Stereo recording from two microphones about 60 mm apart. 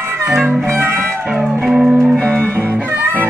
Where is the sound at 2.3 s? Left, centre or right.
Right.